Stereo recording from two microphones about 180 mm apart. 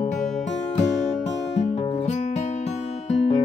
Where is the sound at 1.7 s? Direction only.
40° left (ahead or behind).